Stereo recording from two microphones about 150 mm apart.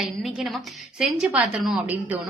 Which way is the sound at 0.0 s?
Centre (ahead or behind).